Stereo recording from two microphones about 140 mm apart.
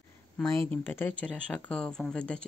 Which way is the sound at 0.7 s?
15° left (ahead or behind).